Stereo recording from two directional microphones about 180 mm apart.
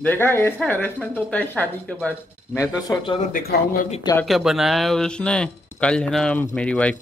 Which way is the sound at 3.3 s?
50° left (ahead or behind).